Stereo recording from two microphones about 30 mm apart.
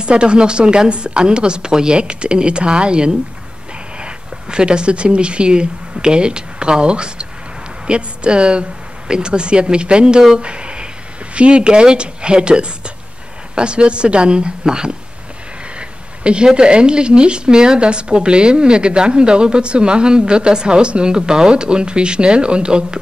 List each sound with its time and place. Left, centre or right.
0.0 s speech: right
16.3 s speech: right